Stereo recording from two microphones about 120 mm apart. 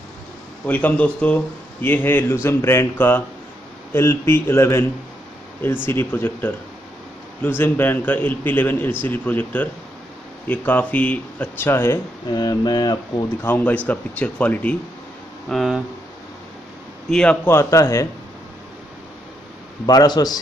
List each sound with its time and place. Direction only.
0.7 s a man's voice: 10° left (ahead or behind)
5.9 s a man's voice: 20° left (ahead or behind)
12.3 s speech: 35° left (ahead or behind)
13.4 s a man's voice: 15° left (ahead or behind)
15.4 s speech: centre (ahead or behind)
17.1 s a man's voice: 5° left (ahead or behind)
17.5 s speech: 25° left (ahead or behind)
19.9 s speech: 35° left (ahead or behind)